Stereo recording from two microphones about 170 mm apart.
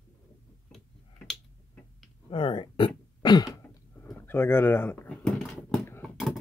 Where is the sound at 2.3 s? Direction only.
30° left (ahead or behind).